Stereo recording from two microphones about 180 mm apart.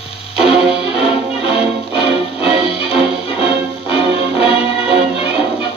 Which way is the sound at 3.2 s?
30° left (ahead or behind).